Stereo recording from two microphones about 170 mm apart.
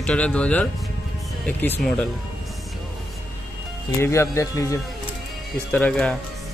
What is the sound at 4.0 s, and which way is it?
Speech, 15° left (ahead or behind).